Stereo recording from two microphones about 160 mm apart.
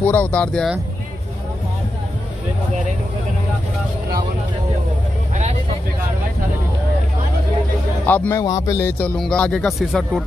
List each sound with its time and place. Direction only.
0.0 s speech: 10° left (ahead or behind)
8.1 s a man's voice: 15° left (ahead or behind)
8.8 s speech: 10° left (ahead or behind)